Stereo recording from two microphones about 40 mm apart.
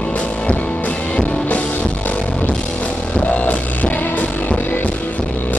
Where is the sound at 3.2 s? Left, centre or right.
Left.